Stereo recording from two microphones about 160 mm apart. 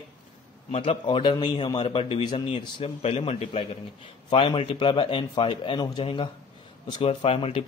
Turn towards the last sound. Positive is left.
turn(degrees=35)  # may be behind; listen again after turning